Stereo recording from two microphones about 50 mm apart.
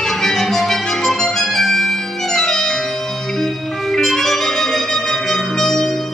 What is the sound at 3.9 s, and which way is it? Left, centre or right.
Music, centre.